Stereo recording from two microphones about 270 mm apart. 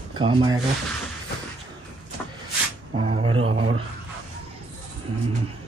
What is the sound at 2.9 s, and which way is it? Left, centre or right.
Speech, right.